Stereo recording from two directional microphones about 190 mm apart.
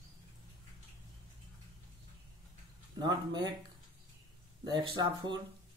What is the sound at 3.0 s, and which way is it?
Speech, 20° right (ahead or behind).